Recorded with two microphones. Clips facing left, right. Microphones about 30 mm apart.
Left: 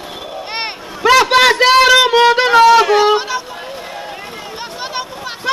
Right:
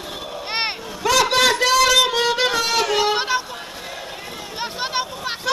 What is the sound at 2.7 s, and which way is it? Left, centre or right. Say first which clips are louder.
Music: left 11 dB; left.